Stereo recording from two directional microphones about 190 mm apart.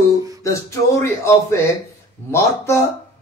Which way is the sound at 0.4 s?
15° left (ahead or behind).